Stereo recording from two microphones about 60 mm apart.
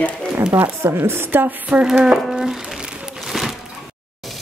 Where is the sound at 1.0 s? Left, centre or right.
Right.